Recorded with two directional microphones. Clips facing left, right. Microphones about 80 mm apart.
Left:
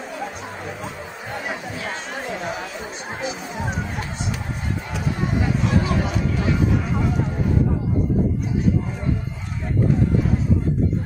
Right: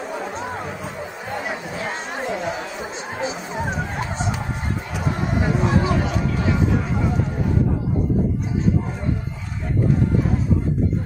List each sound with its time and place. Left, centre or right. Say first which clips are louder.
1.5 s chatter: right 1 dB; right
3.2 s music: right 3 dB; right
5.6 s a sound: right 3 dB; right